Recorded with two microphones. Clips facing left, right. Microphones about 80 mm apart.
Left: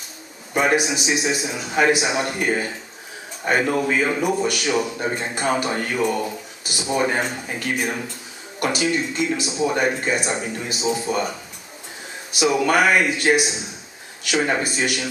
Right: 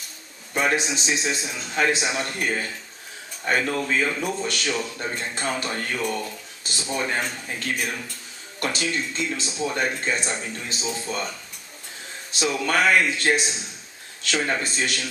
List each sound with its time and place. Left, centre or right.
0.6 s speech: centre
12.4 s speech: centre